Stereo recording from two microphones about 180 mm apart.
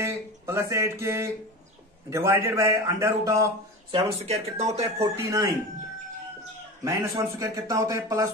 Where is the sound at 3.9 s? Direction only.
35° right (ahead or behind).